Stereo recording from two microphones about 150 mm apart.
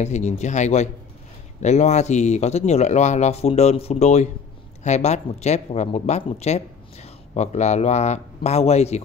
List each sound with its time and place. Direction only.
0.0 s speech: 50° left (ahead or behind)